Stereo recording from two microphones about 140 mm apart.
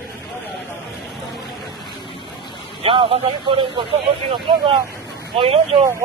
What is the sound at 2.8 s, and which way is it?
Speech, 40° right (ahead or behind).